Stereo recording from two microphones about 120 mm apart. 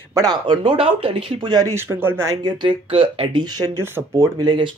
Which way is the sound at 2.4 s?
45° right (ahead or behind).